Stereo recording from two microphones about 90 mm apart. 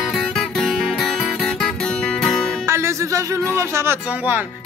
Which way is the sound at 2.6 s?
30° right (ahead or behind).